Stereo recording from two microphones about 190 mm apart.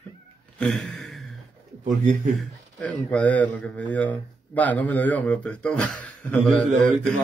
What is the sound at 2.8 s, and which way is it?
Speech, 5° left (ahead or behind).